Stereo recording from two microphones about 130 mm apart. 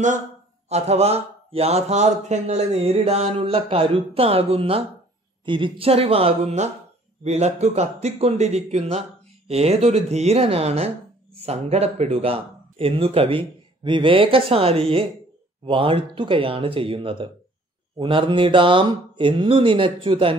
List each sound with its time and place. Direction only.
0.7 s speech: 55° right (ahead or behind)